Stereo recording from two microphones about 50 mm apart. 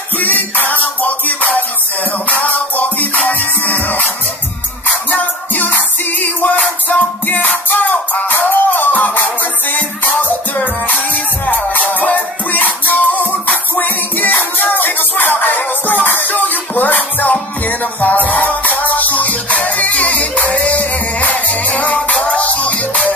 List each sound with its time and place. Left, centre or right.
0.2 s music: left
5.1 s music: left
7.7 s music: left